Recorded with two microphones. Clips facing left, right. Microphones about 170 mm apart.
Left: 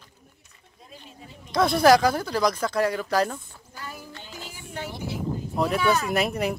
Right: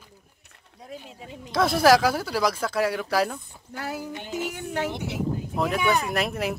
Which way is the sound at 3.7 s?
80° right.